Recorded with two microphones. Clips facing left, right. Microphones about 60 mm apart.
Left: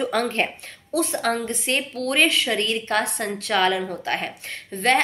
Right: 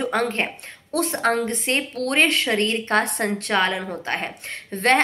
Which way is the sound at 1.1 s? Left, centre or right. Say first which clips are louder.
Right 2 dB; right.